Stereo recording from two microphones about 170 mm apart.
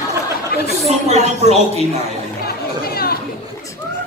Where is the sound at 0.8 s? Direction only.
40° right (ahead or behind).